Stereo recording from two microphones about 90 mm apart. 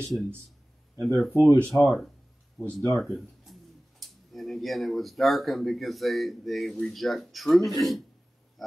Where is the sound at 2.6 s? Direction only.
5° left (ahead or behind).